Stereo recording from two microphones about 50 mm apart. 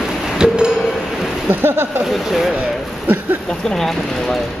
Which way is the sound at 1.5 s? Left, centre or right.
Right.